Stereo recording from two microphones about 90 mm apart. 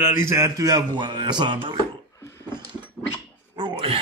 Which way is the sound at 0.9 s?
55° right (ahead or behind).